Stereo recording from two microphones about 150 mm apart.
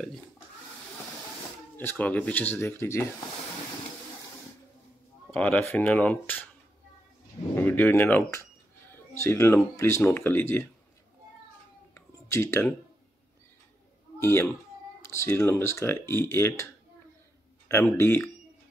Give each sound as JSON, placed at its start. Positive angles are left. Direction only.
{"t": 1.8, "sound": "speech", "side_deg": 10}
{"t": 5.3, "sound": "speech", "side_deg": 10}
{"t": 7.5, "sound": "speech", "side_deg": 15}
{"t": 11.9, "sound": "computer keyboard", "side_deg": 15}
{"t": 14.2, "sound": "speech", "side_deg": 15}
{"t": 17.6, "sound": "speech", "side_deg": 15}